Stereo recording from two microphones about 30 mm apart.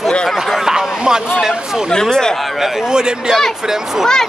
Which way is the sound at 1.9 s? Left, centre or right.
Left.